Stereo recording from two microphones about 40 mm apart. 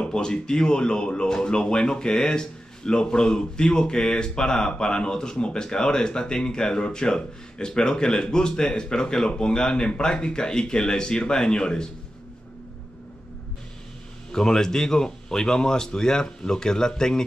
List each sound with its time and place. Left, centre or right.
0.0 s speech: centre
14.3 s speech: centre